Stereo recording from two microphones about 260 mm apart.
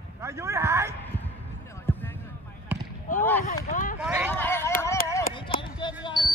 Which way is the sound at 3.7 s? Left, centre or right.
Left.